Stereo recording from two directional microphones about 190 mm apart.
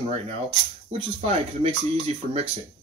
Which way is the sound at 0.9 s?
30° right (ahead or behind).